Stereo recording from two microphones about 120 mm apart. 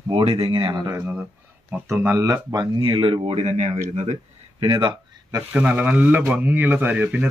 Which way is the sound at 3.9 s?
70° right (ahead or behind).